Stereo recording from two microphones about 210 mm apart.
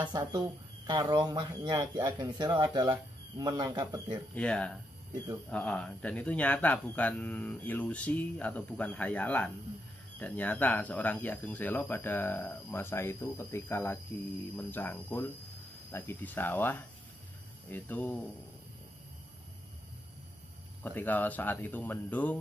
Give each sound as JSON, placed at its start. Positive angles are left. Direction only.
{"t": 0.1, "sound": "speech", "side_deg": -20}
{"t": 4.4, "sound": "speech", "side_deg": 5}
{"t": 20.8, "sound": "speech", "side_deg": 10}